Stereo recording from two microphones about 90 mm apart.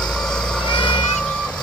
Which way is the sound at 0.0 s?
5° left (ahead or behind).